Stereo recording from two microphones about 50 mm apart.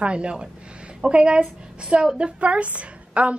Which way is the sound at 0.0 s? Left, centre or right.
Right.